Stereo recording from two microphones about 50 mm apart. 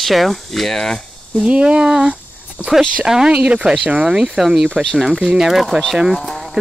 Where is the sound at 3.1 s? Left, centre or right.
Centre.